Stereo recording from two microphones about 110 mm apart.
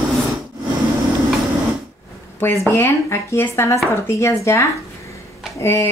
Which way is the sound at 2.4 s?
25° left (ahead or behind).